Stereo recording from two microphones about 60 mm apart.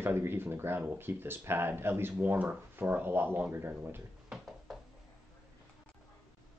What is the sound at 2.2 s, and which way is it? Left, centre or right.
Speech, right.